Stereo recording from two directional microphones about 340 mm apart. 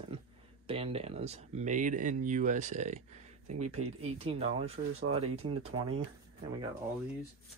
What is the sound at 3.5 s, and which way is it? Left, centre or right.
Speech, right.